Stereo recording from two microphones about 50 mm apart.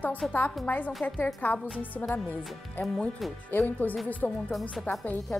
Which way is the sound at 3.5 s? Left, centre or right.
Left.